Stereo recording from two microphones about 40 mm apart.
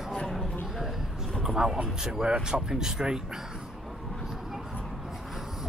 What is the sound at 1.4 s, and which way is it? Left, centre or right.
Speech, centre.